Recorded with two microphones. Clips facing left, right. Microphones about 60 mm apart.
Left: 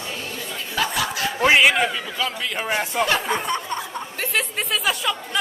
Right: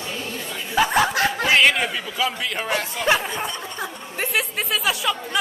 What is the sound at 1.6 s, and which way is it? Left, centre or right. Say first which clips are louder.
A man's voice: left 1 dB; centre.